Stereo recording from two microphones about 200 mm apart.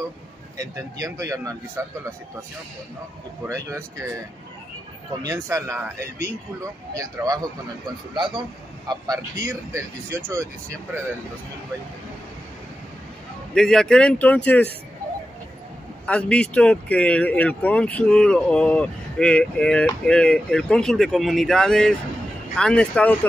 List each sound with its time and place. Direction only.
0.6 s speech: 15° right (ahead or behind)
3.4 s speech: 15° right (ahead or behind)
5.2 s a man's voice: 15° right (ahead or behind)
13.6 s speech: 5° left (ahead or behind)
16.1 s speech: 5° left (ahead or behind)